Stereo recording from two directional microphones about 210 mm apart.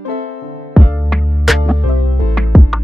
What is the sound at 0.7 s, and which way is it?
Music, centre (ahead or behind).